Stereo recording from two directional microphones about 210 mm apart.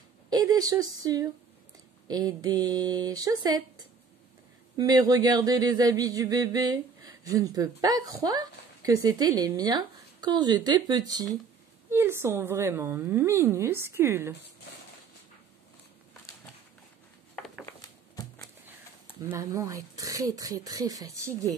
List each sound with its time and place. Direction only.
0.3 s speech: 20° right (ahead or behind)
4.7 s speech: 20° right (ahead or behind)
17.6 s a sound: 15° left (ahead or behind)
19.3 s speech: 15° right (ahead or behind)